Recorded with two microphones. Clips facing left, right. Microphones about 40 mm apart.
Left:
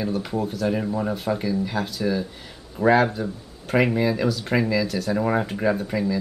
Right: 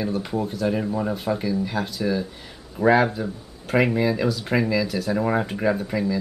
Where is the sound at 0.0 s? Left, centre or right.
Centre.